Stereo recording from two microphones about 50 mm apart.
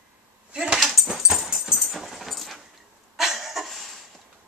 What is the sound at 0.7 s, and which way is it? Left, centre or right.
Dog, centre.